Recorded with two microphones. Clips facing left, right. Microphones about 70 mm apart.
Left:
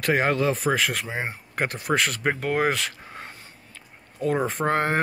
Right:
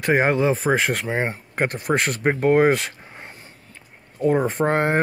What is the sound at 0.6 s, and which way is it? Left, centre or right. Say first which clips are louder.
Speech: right 3 dB; right.